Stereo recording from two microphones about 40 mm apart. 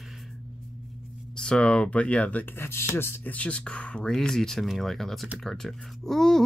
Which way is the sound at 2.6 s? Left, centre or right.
Left.